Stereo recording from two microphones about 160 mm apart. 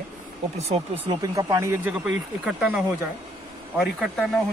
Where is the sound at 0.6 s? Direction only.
40° right (ahead or behind).